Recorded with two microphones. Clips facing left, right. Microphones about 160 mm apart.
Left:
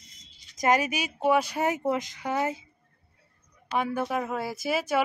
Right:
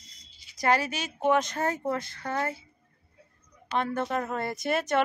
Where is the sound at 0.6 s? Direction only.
15° left (ahead or behind).